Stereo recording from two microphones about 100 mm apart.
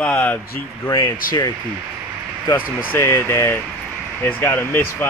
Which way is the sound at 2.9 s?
25° left (ahead or behind).